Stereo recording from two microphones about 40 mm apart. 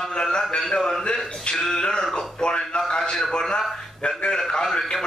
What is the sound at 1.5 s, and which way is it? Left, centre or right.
A man's voice, centre.